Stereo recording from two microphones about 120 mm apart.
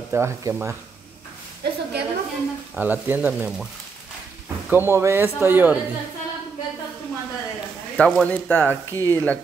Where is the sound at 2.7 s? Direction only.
15° right (ahead or behind).